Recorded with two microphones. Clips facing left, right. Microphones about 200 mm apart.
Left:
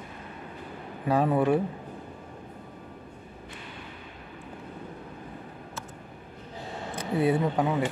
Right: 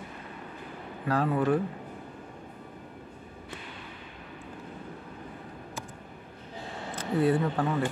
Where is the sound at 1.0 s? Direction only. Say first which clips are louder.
Left 3 dB; 15° left (ahead or behind).